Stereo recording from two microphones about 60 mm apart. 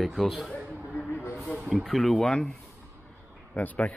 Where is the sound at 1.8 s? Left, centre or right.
Centre.